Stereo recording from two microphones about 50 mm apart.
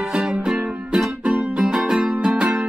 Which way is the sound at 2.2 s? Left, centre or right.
Right.